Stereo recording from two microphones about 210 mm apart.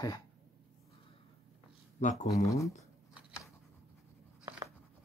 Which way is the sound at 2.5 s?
15° left (ahead or behind).